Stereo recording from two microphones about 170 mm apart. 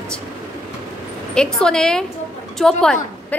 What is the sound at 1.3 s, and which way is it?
A woman's voice, 5° left (ahead or behind).